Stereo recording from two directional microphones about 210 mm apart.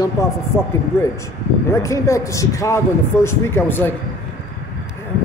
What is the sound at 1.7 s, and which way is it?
A man's voice, 15° left (ahead or behind).